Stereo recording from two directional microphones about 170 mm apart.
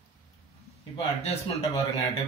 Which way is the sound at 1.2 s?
35° left (ahead or behind).